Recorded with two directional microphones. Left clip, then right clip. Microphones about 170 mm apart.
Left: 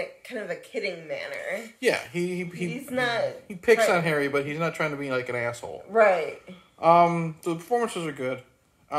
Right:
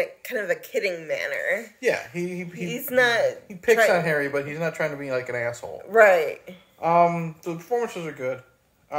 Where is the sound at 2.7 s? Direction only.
60° right (ahead or behind).